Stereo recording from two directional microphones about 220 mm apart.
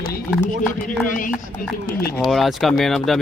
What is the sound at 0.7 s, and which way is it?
Speech, 40° left (ahead or behind).